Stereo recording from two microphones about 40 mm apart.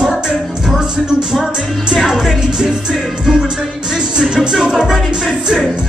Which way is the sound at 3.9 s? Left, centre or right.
Centre.